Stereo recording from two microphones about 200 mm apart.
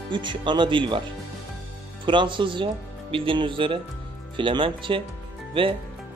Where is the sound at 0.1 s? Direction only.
25° right (ahead or behind).